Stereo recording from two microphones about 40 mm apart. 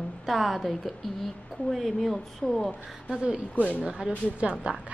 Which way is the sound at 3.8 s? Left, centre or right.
Right.